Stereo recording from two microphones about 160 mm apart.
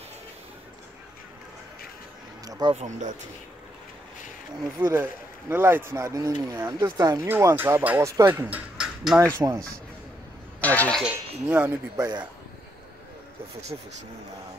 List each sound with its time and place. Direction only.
2.4 s speech: 20° right (ahead or behind)
2.7 s speech: 45° right (ahead or behind)
4.7 s speech: 15° right (ahead or behind)
9.4 s speech: 20° right (ahead or behind)
10.6 s speech: 10° left (ahead or behind)
11.0 s speech: 10° right (ahead or behind)
13.7 s speech: 25° right (ahead or behind)